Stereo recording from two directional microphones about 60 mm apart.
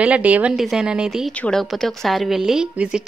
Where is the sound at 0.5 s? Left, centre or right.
Centre.